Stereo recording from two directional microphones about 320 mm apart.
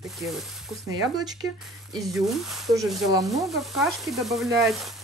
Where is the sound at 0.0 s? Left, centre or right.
Centre.